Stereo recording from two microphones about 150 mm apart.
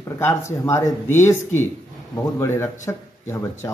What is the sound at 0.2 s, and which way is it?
A man's voice, 20° left (ahead or behind).